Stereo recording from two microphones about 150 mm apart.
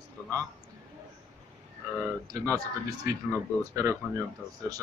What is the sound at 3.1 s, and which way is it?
Speech, 20° right (ahead or behind).